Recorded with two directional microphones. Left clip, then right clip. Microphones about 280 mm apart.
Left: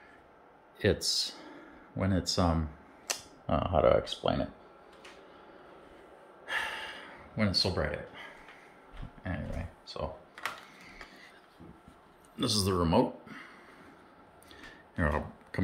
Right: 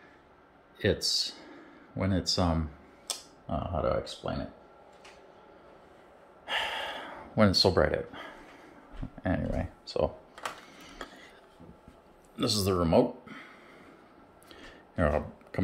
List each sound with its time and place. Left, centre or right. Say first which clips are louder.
0.7 s speech: right 1 dB; centre
3.5 s speech: left 5 dB; centre
6.4 s gasp: right 3 dB; centre; by 8.4 s right
9.2 s cash register: right 8 dB; right
12.4 s speech: right 2 dB; centre
14.5 s a sound: right 3 dB; centre